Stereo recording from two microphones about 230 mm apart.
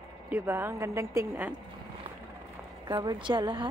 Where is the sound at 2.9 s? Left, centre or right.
Centre.